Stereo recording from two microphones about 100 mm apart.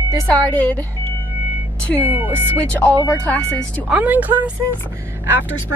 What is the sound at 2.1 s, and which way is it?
Speech, 20° right (ahead or behind).